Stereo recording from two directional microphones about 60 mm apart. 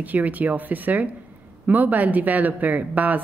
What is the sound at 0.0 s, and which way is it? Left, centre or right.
A woman's voice, right.